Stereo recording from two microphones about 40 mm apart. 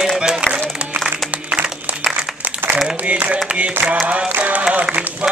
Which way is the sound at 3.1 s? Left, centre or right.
Right.